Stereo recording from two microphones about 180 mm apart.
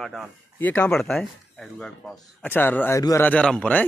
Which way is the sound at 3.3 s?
5° left (ahead or behind).